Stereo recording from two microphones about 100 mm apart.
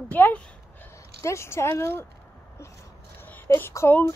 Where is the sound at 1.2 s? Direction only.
30° left (ahead or behind).